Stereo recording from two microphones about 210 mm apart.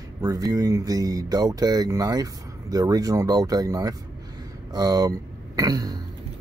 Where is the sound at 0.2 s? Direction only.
15° right (ahead or behind).